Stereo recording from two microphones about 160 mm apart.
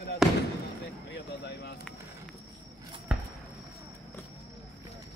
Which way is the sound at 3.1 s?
5° right (ahead or behind).